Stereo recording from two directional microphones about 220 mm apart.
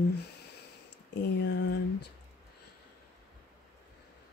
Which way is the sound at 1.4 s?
50° left (ahead or behind).